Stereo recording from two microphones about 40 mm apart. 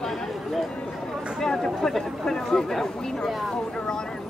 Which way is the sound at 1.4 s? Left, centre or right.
Centre.